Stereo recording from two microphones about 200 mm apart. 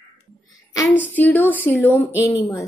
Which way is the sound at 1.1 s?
10° left (ahead or behind).